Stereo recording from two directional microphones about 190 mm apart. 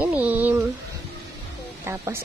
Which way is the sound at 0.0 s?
10° right (ahead or behind).